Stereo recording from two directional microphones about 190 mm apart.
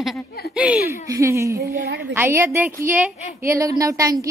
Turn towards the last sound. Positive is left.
turn(degrees=-15)  # may be behind; listen again after turning